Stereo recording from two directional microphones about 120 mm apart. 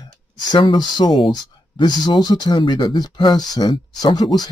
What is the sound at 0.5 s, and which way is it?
Speech, 40° left (ahead or behind).